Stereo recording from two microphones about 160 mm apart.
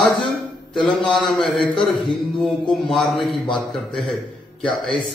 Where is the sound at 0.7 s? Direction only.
Centre (ahead or behind).